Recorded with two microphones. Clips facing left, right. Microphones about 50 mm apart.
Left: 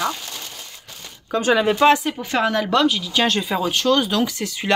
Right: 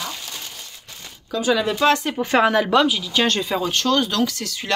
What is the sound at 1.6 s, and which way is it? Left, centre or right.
Speech, left.